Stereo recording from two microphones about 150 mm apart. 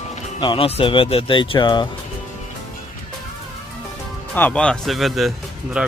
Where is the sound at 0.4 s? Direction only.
35° left (ahead or behind).